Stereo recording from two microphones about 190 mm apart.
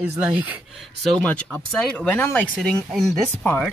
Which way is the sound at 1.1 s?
5° left (ahead or behind).